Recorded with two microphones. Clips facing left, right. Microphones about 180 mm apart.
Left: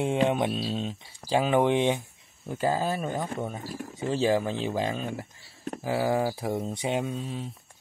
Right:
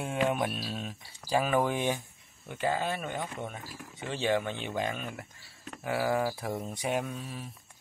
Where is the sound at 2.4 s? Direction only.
35° left (ahead or behind).